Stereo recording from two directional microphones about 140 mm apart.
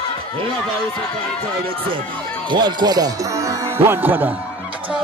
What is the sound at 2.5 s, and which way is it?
Speech, 35° right (ahead or behind).